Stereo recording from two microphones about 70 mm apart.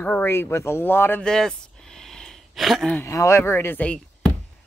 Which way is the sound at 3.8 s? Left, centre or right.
Centre.